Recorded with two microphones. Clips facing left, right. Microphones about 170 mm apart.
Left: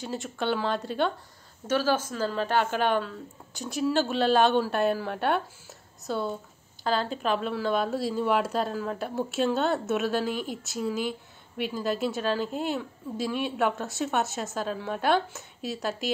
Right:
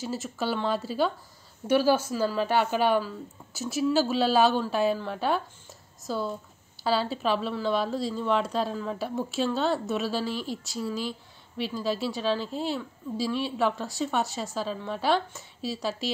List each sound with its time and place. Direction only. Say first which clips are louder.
0.0 s speech: even; centre (ahead or behind)
10.3 s speech: even; 50° left (ahead or behind)
10.7 s speech: left 3 dB; centre (ahead or behind)
11.1 s a sound: left 3 dB; 55° left (ahead or behind)
11.7 s speech: left 1 dB; centre (ahead or behind)